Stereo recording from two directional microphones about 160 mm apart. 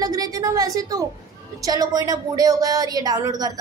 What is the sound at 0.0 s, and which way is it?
A woman's voice, 20° right (ahead or behind).